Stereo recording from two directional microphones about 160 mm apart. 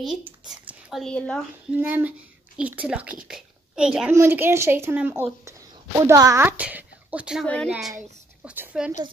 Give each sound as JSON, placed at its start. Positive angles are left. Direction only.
{"t": 0.0, "sound": "speech", "side_deg": -5}
{"t": 1.7, "sound": "speech", "side_deg": -10}
{"t": 4.1, "sound": "a woman's voice", "side_deg": -15}
{"t": 7.4, "sound": "speech", "side_deg": 5}
{"t": 8.5, "sound": "a woman's voice", "side_deg": -5}